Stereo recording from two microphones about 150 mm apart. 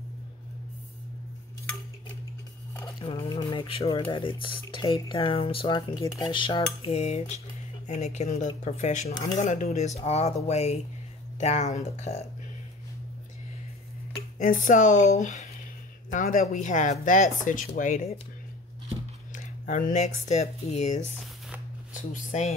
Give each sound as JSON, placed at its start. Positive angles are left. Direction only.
{"t": 3.0, "sound": "speech", "side_deg": 40}
{"t": 6.9, "sound": "speech", "side_deg": 45}
{"t": 14.4, "sound": "speech", "side_deg": 60}
{"t": 19.3, "sound": "speech", "side_deg": 55}